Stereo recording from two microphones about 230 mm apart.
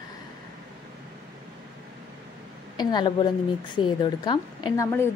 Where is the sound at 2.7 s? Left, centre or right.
Centre.